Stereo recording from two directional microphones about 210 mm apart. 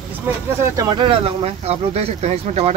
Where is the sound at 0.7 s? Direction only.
20° right (ahead or behind).